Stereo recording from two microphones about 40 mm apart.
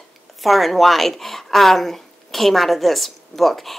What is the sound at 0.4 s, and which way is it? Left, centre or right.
Speech, centre.